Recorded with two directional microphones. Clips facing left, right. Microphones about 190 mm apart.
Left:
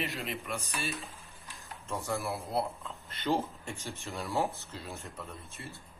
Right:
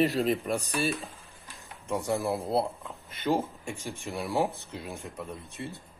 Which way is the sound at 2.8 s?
10° right (ahead or behind).